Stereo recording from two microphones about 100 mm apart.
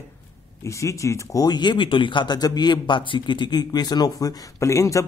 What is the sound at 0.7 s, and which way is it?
Speech, 30° left (ahead or behind).